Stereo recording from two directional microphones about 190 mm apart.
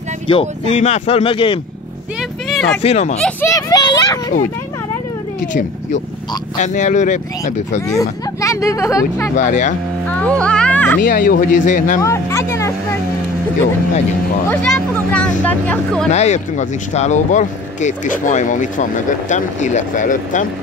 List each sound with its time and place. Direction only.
0.3 s speech: 35° left (ahead or behind)
2.8 s speech: 35° left (ahead or behind)
3.2 s a sound: 10° left (ahead or behind)
5.5 s speech: 45° left (ahead or behind)
7.9 s speech: 15° left (ahead or behind)
9.4 s speech: 40° left (ahead or behind)
10.0 s music: 5° left (ahead or behind)
11.0 s speech: 45° left (ahead or behind)
12.0 s a sound: 15° left (ahead or behind)
14.5 s speech: 5° left (ahead or behind)
16.1 s speech: 35° left (ahead or behind)